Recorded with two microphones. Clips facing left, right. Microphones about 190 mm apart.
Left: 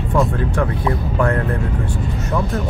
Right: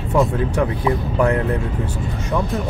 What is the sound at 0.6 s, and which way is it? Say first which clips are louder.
Speech: right 1 dB; 15° right (ahead or behind).